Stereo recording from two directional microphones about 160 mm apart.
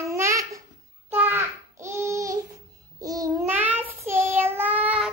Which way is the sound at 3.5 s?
10° right (ahead or behind).